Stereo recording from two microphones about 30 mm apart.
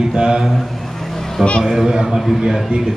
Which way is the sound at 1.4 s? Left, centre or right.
Centre.